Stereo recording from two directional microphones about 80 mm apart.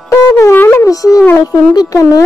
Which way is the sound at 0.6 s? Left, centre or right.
Left.